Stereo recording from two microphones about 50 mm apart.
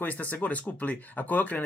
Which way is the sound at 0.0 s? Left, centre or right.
Left.